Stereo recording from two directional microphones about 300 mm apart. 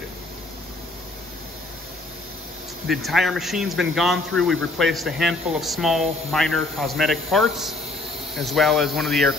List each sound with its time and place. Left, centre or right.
2.9 s speech: centre